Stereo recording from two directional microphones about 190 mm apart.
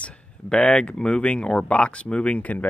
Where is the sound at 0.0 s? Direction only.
5° left (ahead or behind).